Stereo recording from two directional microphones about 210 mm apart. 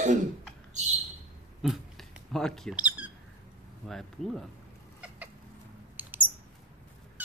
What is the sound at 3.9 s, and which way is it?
Speech, centre (ahead or behind).